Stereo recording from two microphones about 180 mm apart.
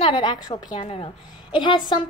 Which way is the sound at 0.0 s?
25° left (ahead or behind).